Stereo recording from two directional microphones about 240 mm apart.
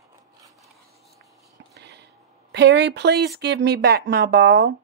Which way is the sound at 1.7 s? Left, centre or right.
Right.